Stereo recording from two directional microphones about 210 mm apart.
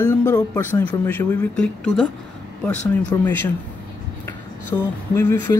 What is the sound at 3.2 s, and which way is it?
Speech, 10° left (ahead or behind).